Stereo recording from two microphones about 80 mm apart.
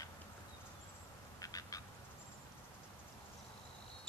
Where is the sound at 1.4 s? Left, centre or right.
Left.